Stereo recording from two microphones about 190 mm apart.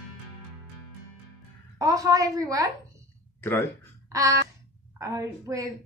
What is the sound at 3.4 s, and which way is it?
Speech, 10° left (ahead or behind).